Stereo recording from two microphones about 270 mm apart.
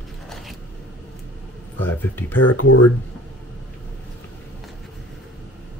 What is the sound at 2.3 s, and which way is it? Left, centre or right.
Speech, left.